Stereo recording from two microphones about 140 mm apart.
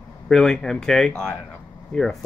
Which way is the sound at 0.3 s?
5° left (ahead or behind).